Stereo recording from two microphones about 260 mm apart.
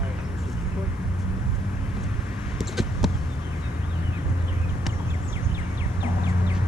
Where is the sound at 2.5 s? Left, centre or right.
Centre.